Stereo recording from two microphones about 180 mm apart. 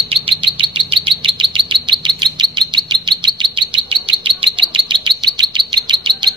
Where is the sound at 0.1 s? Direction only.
30° right (ahead or behind).